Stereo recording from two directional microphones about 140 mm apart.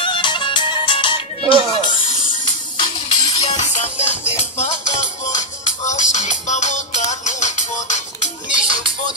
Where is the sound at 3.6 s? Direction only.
55° left (ahead or behind).